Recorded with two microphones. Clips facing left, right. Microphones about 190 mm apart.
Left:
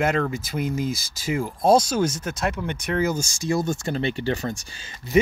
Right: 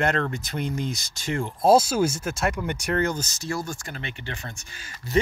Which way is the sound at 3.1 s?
10° left (ahead or behind).